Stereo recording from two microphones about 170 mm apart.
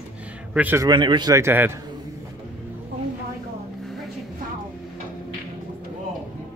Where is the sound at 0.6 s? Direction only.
10° right (ahead or behind).